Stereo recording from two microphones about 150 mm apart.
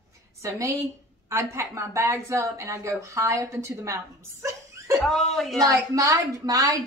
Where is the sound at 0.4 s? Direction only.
20° right (ahead or behind).